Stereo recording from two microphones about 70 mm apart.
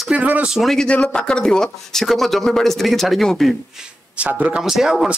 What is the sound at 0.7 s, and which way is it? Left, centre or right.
Speech, centre.